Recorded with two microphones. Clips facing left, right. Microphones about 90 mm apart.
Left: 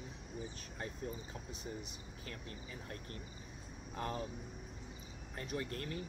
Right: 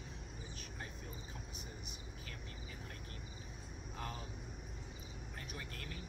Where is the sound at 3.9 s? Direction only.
40° left (ahead or behind).